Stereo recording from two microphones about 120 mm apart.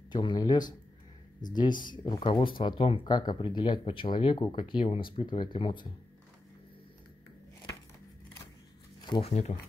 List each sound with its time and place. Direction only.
0.1 s speech: 40° left (ahead or behind)
3.1 s speech: 35° left (ahead or behind)
9.2 s speech: 70° left (ahead or behind)